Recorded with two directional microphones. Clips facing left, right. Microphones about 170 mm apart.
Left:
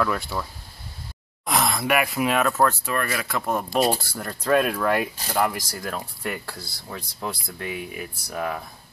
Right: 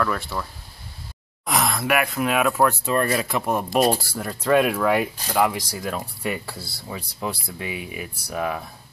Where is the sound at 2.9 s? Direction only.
30° right (ahead or behind).